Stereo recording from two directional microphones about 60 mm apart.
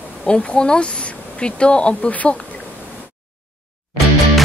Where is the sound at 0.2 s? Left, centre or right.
Centre.